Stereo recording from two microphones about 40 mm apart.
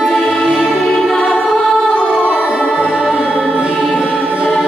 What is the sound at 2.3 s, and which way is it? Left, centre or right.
Music, centre.